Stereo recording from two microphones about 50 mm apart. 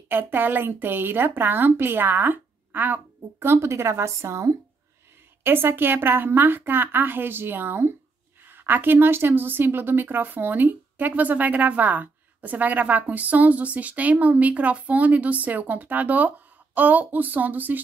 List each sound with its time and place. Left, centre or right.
0.1 s speech: right
3.4 s a woman's voice: right
5.4 s speech: right